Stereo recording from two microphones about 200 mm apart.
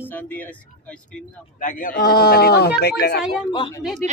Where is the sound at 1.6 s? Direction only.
45° left (ahead or behind).